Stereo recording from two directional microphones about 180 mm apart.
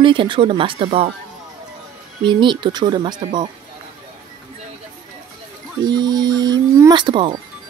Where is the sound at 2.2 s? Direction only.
25° right (ahead or behind).